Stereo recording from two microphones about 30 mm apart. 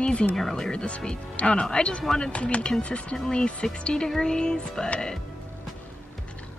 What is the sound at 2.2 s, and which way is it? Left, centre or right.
Speech, left.